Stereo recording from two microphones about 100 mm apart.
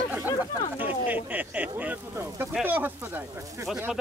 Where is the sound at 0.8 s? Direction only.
15° right (ahead or behind).